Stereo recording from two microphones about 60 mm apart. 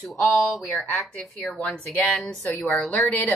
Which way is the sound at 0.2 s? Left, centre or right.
Centre.